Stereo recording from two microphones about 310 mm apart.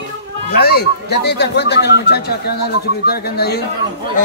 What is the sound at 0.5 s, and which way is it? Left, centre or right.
A man's voice, left.